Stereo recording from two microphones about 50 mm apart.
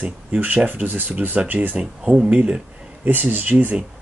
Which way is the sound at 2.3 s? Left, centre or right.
Right.